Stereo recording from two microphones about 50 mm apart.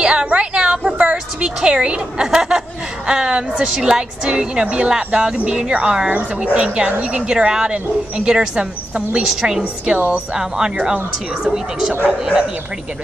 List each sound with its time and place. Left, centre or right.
0.0 s a sound: centre
2.3 s a woman's voice: centre
9.3 s speech: centre
9.9 s a woman's voice: right
10.3 s speech: centre
11.9 s a woman's voice: right